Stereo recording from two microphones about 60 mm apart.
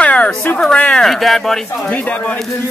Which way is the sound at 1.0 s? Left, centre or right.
Centre.